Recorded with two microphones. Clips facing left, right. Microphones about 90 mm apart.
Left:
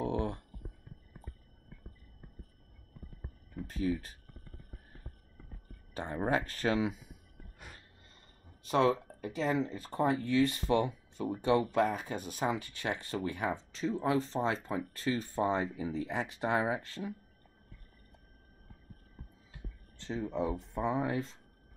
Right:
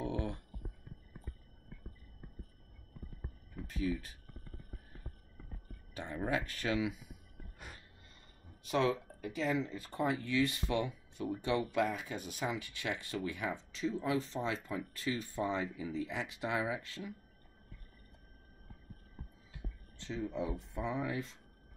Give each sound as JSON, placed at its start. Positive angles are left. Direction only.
{"t": 0.0, "sound": "a sound", "side_deg": 35}
{"t": 3.6, "sound": "speech", "side_deg": 35}
{"t": 5.9, "sound": "speech", "side_deg": 40}
{"t": 8.6, "sound": "speech", "side_deg": 35}
{"t": 20.0, "sound": "speech", "side_deg": 40}